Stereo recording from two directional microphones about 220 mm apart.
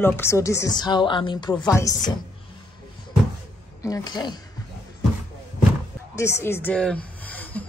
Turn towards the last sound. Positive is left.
turn(degrees=5)  # may be behind; listen again after turning